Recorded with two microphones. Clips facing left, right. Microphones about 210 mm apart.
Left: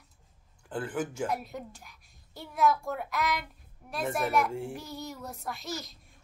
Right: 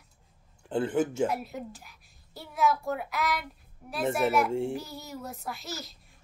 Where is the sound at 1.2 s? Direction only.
5° right (ahead or behind).